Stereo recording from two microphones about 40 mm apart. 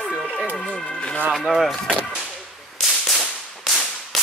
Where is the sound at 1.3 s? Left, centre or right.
Centre.